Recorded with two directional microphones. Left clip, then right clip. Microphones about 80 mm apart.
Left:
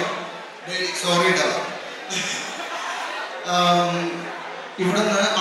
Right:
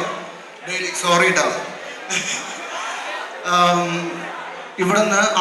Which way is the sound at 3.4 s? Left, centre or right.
Right.